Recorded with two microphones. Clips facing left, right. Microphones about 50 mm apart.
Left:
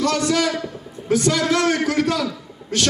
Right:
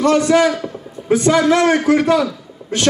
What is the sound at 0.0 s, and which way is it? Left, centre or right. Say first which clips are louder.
A man's voice: right 7 dB; right.